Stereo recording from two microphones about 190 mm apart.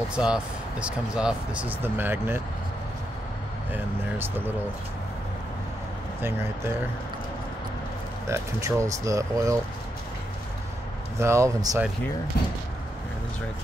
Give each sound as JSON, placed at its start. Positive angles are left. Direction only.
{"t": 0.1, "sound": "speech", "side_deg": -5}
{"t": 3.7, "sound": "speech", "side_deg": -10}
{"t": 6.2, "sound": "speech", "side_deg": -15}
{"t": 8.3, "sound": "speech", "side_deg": -15}
{"t": 11.1, "sound": "speech", "side_deg": -15}